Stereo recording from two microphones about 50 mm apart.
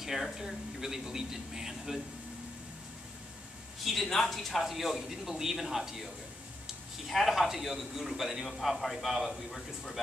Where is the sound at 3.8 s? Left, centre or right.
Centre.